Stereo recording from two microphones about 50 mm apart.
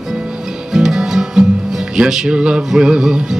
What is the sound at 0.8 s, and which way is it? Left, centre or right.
Music, centre.